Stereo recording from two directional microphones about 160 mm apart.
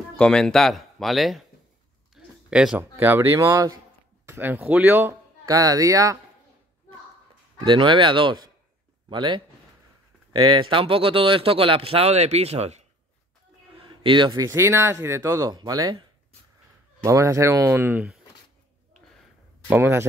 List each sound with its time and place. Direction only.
0.2 s speech: 5° left (ahead or behind); by 6.1 s 20° right (ahead or behind)
7.6 s speech: 30° right (ahead or behind)
14.0 s speech: 30° right (ahead or behind)
17.0 s speech: 20° right (ahead or behind)
19.7 s speech: 15° right (ahead or behind)